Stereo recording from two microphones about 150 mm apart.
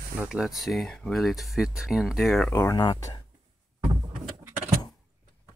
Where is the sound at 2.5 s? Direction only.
15° left (ahead or behind).